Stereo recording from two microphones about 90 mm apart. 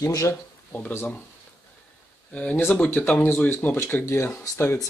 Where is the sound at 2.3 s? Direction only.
15° left (ahead or behind); by 4.8 s 30° left (ahead or behind).